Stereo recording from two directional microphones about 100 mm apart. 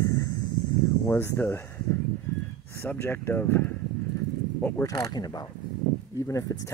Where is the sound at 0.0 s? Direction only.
30° left (ahead or behind).